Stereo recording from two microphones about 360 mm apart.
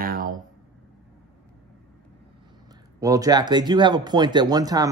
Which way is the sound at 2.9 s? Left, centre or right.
Centre.